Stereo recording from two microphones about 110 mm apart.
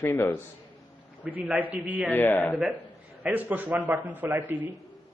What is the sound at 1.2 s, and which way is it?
Speech, 15° right (ahead or behind).